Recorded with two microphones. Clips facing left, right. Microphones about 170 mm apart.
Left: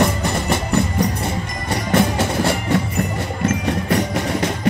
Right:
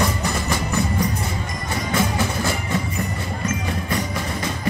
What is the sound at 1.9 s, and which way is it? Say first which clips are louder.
Music: left 5 dB; 65° left (ahead or behind).